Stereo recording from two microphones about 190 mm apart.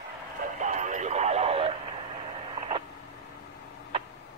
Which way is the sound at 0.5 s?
40° right (ahead or behind).